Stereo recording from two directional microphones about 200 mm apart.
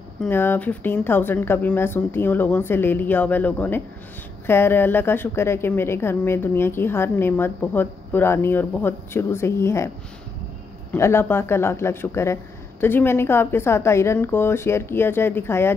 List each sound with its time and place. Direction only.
0.2 s a woman's voice: 10° left (ahead or behind)
10.9 s a woman's voice: 10° left (ahead or behind)